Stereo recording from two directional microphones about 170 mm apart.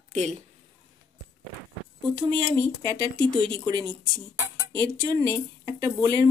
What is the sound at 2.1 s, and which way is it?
Speech, 25° right (ahead or behind).